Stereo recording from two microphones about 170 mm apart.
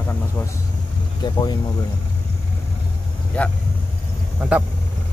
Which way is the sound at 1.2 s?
25° left (ahead or behind).